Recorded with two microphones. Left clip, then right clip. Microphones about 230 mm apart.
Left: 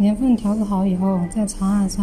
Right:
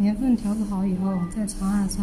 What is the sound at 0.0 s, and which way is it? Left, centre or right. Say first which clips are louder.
A woman's voice: left 5 dB; centre.